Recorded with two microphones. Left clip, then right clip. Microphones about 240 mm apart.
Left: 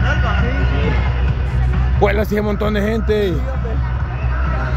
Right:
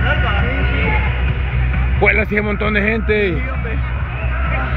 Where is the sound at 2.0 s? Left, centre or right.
Centre.